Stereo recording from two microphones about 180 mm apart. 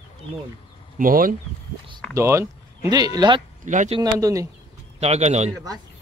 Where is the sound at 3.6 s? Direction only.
45° right (ahead or behind).